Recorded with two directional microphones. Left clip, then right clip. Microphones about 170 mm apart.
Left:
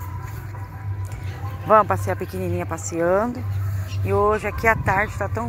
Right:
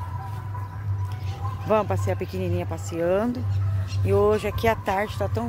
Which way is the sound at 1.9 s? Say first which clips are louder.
Left 4 dB; 25° right (ahead or behind).